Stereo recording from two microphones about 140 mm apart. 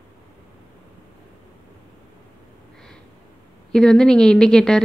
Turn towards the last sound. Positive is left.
turn(degrees=5)  # may be behind; listen again after turning